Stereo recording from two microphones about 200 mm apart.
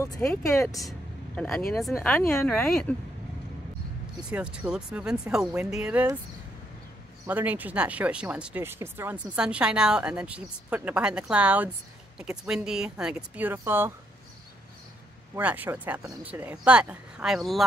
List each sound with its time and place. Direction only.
0.2 s speech: 10° left (ahead or behind)
0.8 s vehicle: 5° left (ahead or behind)
1.7 s speech: centre (ahead or behind)
4.3 s speech: 5° right (ahead or behind)
7.2 s speech: 10° right (ahead or behind)
15.3 s speech: 10° right (ahead or behind)